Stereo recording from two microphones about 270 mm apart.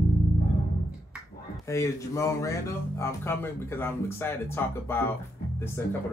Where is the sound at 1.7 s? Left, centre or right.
Centre.